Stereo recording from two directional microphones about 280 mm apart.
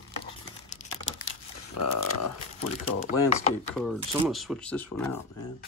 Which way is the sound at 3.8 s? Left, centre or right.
Centre.